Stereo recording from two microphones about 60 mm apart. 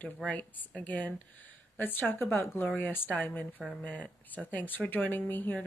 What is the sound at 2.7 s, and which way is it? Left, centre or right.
Speech, left.